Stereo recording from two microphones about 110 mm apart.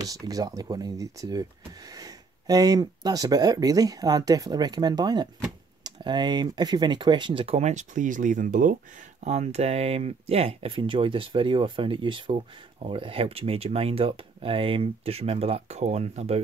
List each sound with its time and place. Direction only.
0.0 s speech: 35° right (ahead or behind); by 7.8 s 80° right
9.2 s speech: 80° right